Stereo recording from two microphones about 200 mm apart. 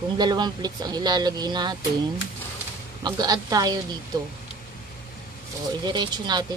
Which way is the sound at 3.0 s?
20° right (ahead or behind).